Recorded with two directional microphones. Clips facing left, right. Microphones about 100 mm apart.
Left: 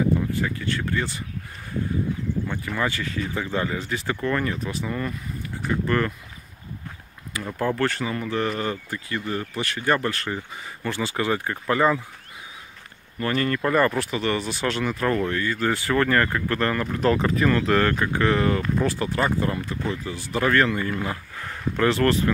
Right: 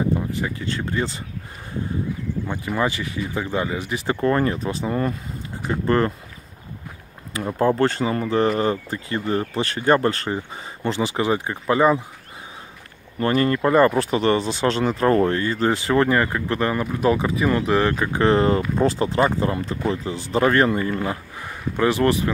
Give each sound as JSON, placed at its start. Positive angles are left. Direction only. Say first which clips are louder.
{"t": 0.3, "sound": "speech", "louder": "even", "side_deg": -20}
{"t": 2.4, "sound": "speech", "louder": "right 7 dB", "side_deg": -15}
{"t": 4.2, "sound": "speech", "louder": "right 7 dB", "side_deg": -35}
{"t": 7.3, "sound": "speech", "louder": "right 6 dB", "side_deg": -25}
{"t": 13.2, "sound": "speech", "louder": "right 5 dB", "side_deg": -30}
{"t": 18.2, "sound": "speech", "louder": "right 5 dB", "side_deg": -30}